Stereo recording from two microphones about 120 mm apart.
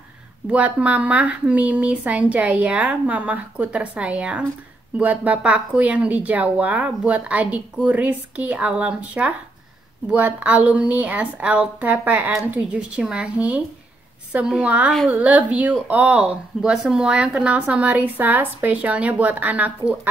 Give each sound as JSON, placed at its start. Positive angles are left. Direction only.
{"t": 0.5, "sound": "speech", "side_deg": -10}